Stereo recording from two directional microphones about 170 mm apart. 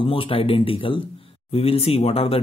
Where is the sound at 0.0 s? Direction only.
30° left (ahead or behind).